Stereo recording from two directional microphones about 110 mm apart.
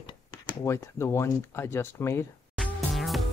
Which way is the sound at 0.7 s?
25° left (ahead or behind).